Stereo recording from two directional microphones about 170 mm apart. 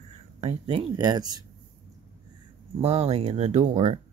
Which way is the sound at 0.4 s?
35° right (ahead or behind).